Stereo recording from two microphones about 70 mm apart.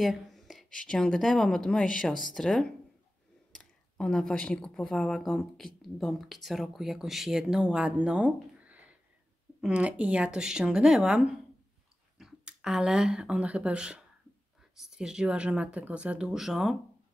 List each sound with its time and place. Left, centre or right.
0.0 s a sound: centre
0.7 s speech: centre
16.3 s speech: centre